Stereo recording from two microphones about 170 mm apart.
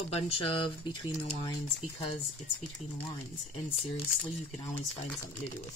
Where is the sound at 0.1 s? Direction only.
30° left (ahead or behind).